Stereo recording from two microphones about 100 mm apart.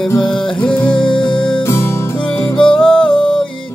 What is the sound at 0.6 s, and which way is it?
Music, 10° left (ahead or behind).